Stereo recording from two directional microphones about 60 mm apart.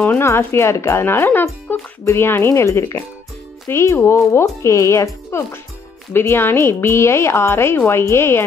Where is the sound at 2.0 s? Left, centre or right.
Left.